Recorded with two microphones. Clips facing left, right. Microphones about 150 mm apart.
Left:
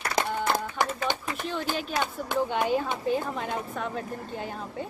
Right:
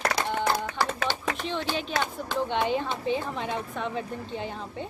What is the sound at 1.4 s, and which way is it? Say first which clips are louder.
Speech: right 1 dB; 5° left (ahead or behind).